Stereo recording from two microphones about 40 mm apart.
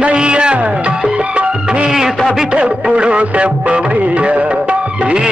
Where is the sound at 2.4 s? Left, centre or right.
Right.